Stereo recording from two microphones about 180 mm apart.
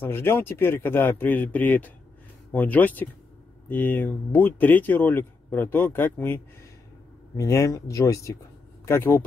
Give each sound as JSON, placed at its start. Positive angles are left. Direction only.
{"t": 0.0, "sound": "speech", "side_deg": 15}